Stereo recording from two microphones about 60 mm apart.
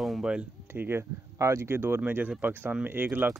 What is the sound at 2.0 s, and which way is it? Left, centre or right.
Speech, right.